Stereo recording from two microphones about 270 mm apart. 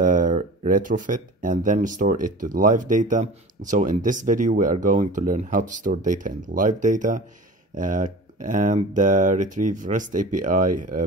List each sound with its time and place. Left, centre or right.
0.0 s speech: right